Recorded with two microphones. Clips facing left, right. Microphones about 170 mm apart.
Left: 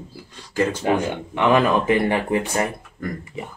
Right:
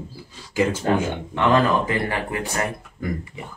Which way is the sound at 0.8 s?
15° left (ahead or behind).